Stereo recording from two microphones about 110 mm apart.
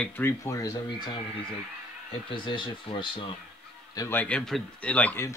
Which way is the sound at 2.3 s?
50° left (ahead or behind).